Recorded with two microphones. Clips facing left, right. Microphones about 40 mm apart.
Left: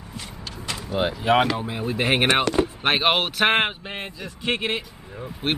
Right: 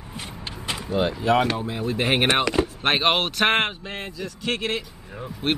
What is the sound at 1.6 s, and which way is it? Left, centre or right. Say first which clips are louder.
Speech: even; centre.